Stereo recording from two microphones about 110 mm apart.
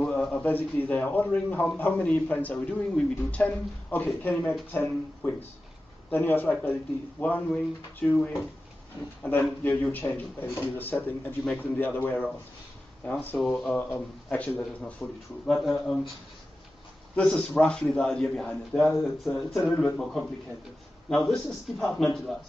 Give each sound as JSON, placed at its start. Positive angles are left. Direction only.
{"t": 0.0, "sound": "speech", "side_deg": 5}
{"t": 9.4, "sound": "speech", "side_deg": 20}
{"t": 17.1, "sound": "a man's voice", "side_deg": 10}